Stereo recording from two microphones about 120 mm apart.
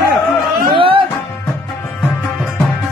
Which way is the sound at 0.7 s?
45° right (ahead or behind).